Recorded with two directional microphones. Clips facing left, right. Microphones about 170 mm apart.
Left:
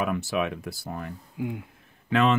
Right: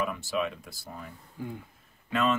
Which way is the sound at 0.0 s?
75° left (ahead or behind).